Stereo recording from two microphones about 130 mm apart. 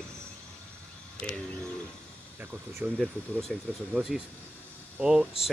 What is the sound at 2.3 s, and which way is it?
Speech, 15° right (ahead or behind).